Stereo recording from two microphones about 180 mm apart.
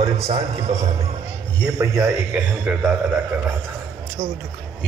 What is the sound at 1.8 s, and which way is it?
A man's voice, 10° right (ahead or behind).